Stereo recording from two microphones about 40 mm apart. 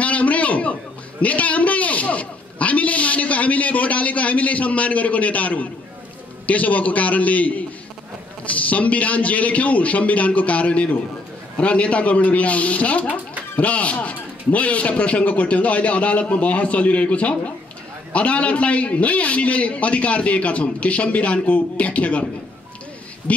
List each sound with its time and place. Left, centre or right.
0.0 s a sound: left
1.2 s a man's voice: left
23.3 s a man's voice: left